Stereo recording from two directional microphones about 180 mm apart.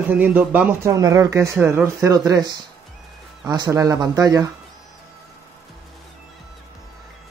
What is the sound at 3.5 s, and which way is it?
Speech, 20° right (ahead or behind).